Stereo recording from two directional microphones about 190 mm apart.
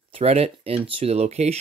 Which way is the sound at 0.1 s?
30° right (ahead or behind).